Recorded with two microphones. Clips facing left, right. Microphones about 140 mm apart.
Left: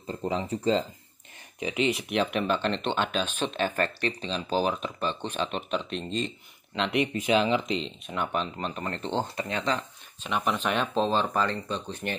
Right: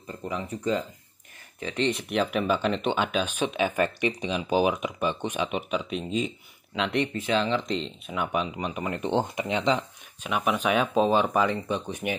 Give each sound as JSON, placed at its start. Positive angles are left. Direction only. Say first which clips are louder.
{"t": 0.0, "sound": "speech", "louder": "left 3 dB", "side_deg": 30}
{"t": 1.6, "sound": "speech", "louder": "even", "side_deg": 15}
{"t": 1.9, "sound": "speech", "louder": "right 3 dB", "side_deg": 0}
{"t": 7.0, "sound": "speech", "louder": "left 2 dB", "side_deg": 15}
{"t": 10.3, "sound": "speech", "louder": "right 3 dB", "side_deg": -10}